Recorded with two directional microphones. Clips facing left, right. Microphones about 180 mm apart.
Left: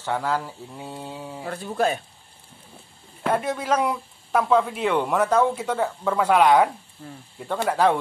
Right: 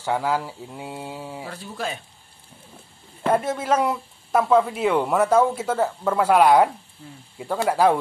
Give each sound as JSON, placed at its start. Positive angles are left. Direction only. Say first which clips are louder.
{"t": 0.0, "sound": "speech", "louder": "right 2 dB", "side_deg": -10}
{"t": 1.4, "sound": "speech", "louder": "left 10 dB", "side_deg": 50}
{"t": 3.3, "sound": "speech", "louder": "right 2 dB", "side_deg": -5}